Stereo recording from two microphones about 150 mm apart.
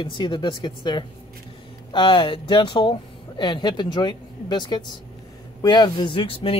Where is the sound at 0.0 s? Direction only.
30° left (ahead or behind).